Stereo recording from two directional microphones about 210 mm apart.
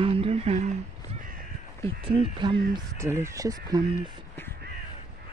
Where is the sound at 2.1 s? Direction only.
25° right (ahead or behind).